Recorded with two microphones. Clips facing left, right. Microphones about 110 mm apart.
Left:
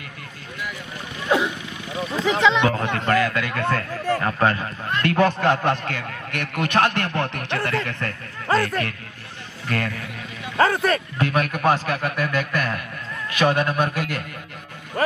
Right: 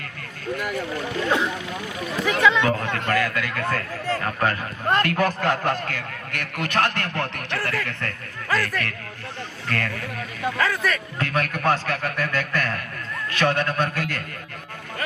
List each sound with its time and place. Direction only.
2.2 s a man's voice: 20° left (ahead or behind)
10.6 s a man's voice: 30° left (ahead or behind)
11.1 s a man's voice: 15° left (ahead or behind)